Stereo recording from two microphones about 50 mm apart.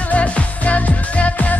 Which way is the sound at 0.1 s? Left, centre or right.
Left.